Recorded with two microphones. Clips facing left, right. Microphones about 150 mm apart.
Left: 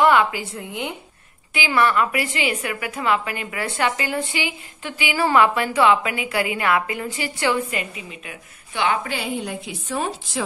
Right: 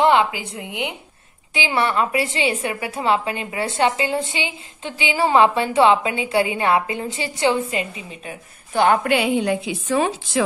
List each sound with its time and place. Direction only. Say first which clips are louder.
0.0 s a woman's voice: right 1 dB; 25° right (ahead or behind); by 9.0 s 45° right (ahead or behind)
9.0 s a woman's voice: right 8 dB; 70° right (ahead or behind)